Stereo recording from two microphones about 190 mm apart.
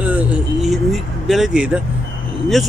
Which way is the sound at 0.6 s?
Centre (ahead or behind).